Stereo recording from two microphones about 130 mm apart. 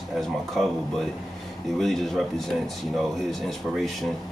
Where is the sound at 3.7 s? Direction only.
Centre (ahead or behind).